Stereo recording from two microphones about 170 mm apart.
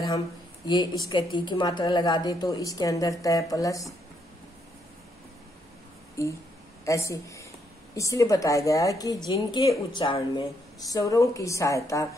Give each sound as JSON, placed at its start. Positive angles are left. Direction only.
{"t": 0.7, "sound": "speech", "side_deg": 25}
{"t": 6.2, "sound": "a woman's voice", "side_deg": 15}
{"t": 10.9, "sound": "speech", "side_deg": 20}